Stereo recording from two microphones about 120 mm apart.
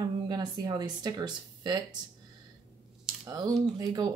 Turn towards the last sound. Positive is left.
turn(degrees=-35)  # may be behind; listen again after turning